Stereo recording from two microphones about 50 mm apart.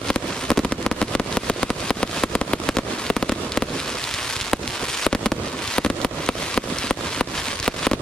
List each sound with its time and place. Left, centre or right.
0.1 s fireworks: centre
5.0 s fireworks: centre
5.8 s a sound: centre